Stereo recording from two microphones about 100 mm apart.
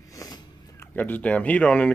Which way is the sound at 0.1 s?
35° left (ahead or behind).